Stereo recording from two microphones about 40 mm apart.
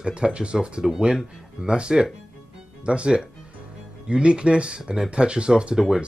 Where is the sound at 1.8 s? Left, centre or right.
Right.